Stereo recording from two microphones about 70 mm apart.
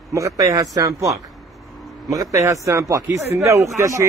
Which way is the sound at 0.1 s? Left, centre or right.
Right.